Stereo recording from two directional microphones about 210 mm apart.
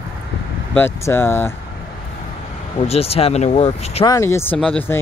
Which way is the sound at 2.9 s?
30° left (ahead or behind).